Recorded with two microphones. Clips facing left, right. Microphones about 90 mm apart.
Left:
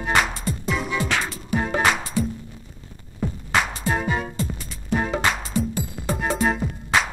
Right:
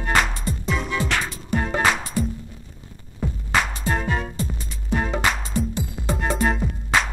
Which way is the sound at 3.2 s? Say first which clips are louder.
Even; centre (ahead or behind).